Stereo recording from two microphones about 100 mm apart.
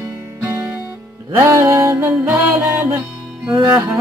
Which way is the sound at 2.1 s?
15° right (ahead or behind).